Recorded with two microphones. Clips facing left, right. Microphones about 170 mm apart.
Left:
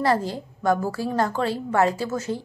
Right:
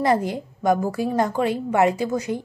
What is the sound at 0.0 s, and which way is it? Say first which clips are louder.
A woman's voice: right 2 dB; 20° right (ahead or behind).